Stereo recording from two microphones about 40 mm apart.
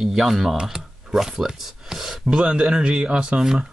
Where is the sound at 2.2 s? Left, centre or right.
Right.